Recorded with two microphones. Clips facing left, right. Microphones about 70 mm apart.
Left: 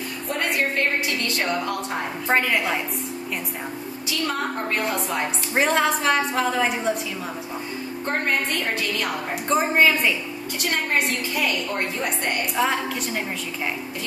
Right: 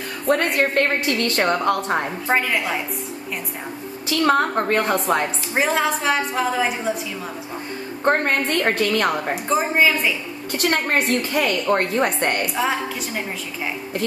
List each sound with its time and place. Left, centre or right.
0.3 s a woman's voice: right
2.2 s a woman's voice: centre
4.1 s a woman's voice: right
5.5 s a woman's voice: centre
8.0 s a woman's voice: right
9.3 s a woman's voice: centre
10.6 s a woman's voice: right
12.5 s a woman's voice: centre